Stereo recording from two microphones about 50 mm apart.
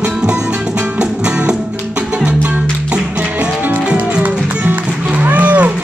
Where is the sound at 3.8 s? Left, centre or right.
Right.